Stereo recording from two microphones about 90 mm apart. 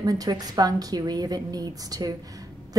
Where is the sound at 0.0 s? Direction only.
45° right (ahead or behind).